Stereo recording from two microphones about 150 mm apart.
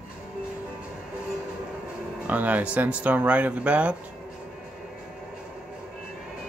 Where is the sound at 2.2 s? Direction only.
10° right (ahead or behind).